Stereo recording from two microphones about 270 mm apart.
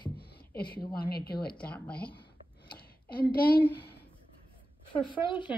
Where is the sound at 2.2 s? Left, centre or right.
Left.